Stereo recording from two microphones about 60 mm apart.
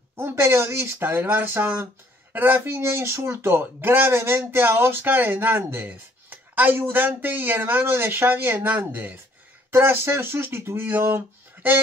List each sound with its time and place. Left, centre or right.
0.1 s speech: right
9.7 s speech: right